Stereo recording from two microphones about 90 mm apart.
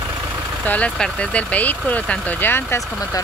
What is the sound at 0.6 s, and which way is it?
Speech, 20° left (ahead or behind).